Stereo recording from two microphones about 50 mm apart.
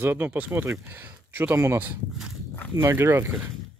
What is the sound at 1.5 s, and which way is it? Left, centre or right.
Speech, right.